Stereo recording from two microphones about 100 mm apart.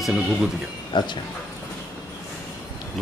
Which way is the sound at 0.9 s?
50° left (ahead or behind).